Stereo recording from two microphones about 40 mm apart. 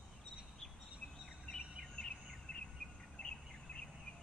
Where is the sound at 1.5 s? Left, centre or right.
Centre.